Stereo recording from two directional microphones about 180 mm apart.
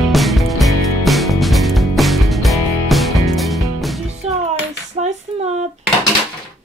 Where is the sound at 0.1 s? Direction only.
Centre (ahead or behind).